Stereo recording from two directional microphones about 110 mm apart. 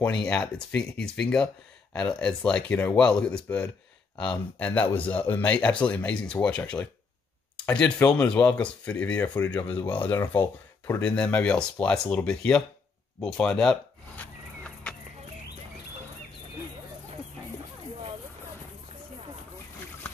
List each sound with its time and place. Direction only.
0.0 s speech: 10° left (ahead or behind)
13.2 s chicken: 5° left (ahead or behind)